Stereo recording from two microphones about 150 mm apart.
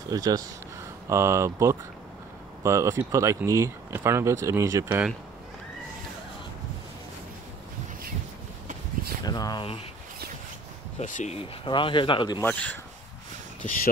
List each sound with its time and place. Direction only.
0.1 s speech: 25° right (ahead or behind)
4.8 s speech: 10° right (ahead or behind)
9.2 s a sound: 25° left (ahead or behind)
11.0 s speech: 55° left (ahead or behind)
11.6 s speech: 35° left (ahead or behind)
12.4 s speech: 10° left (ahead or behind)